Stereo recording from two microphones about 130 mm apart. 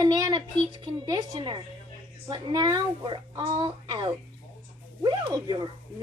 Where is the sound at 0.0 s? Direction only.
35° right (ahead or behind).